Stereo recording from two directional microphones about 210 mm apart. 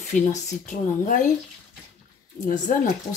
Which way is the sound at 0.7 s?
40° left (ahead or behind).